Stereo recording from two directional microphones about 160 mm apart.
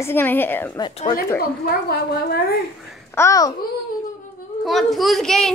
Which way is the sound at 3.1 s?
20° left (ahead or behind).